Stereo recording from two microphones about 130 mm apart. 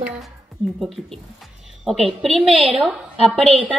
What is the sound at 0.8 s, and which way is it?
A woman's voice, centre (ahead or behind).